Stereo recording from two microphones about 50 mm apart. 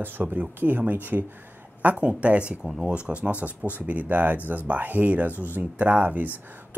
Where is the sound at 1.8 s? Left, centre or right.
Right.